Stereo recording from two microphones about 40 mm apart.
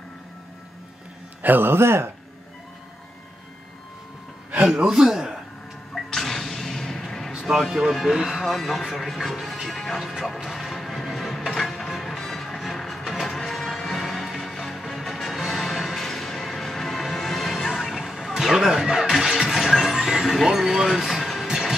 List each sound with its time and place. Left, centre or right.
1.4 s a man's voice: right
1.7 s a man's voice: right
4.5 s a man's voice: right
6.0 s music: centre
7.3 s a sound: centre
7.9 s speech: centre
10.2 s music: centre